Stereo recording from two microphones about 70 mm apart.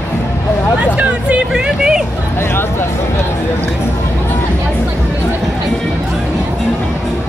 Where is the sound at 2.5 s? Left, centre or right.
Left.